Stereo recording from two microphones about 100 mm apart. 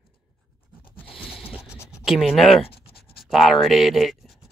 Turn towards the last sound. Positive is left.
turn(degrees=-5)  # may be behind; listen again after turning